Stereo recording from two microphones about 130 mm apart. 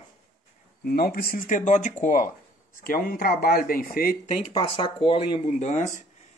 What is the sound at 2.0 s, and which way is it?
Speech, 90° left.